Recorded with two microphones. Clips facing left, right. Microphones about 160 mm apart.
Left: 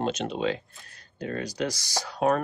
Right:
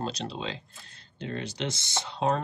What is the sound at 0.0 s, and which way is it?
Speech, 35° right (ahead or behind).